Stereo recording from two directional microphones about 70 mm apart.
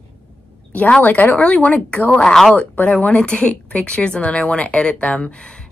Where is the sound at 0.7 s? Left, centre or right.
Centre.